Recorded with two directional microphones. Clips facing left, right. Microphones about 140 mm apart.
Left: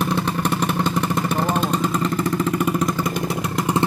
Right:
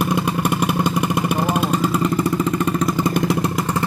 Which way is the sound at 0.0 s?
10° right (ahead or behind).